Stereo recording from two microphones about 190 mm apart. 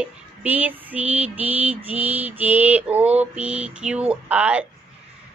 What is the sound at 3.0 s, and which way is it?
Mantra, 35° right (ahead or behind).